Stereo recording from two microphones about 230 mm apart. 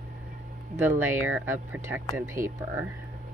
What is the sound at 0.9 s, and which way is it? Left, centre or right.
Speech, centre.